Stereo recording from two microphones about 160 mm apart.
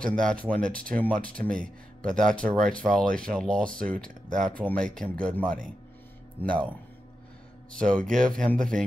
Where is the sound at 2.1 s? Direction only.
5° left (ahead or behind).